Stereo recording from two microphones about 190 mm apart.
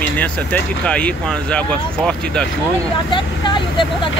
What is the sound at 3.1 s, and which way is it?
Speech, 25° left (ahead or behind).